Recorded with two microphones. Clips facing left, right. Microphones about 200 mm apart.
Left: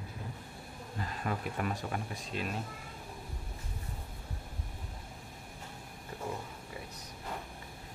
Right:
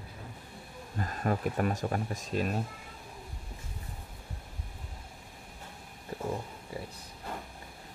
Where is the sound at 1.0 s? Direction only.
45° right (ahead or behind).